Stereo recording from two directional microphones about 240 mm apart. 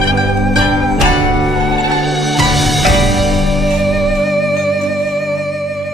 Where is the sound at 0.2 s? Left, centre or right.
Centre.